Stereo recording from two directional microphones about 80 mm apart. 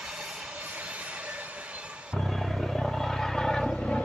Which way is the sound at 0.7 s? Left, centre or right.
Centre.